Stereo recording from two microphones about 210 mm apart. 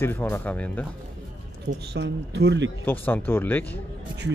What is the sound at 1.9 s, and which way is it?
Speech, 55° right (ahead or behind).